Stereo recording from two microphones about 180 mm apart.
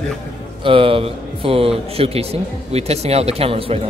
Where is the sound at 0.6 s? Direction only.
30° right (ahead or behind).